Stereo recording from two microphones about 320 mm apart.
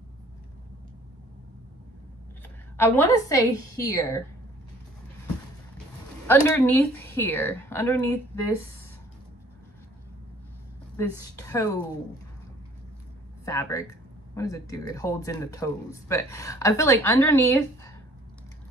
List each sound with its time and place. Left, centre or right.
2.8 s speech: centre
6.2 s speech: centre
11.0 s speech: centre
13.5 s speech: centre